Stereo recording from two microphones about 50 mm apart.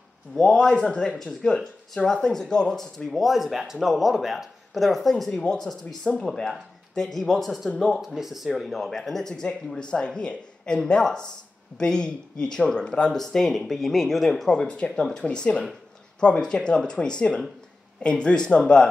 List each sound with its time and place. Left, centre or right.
0.3 s speech: centre
0.6 s speech: centre
3.1 s speech: centre
6.0 s speech: centre
14.5 s speech: left